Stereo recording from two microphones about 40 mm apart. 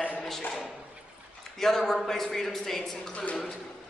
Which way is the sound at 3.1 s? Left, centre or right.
Left.